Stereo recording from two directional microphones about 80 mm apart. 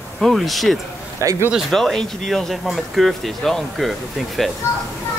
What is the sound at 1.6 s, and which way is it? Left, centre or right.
Speech, centre.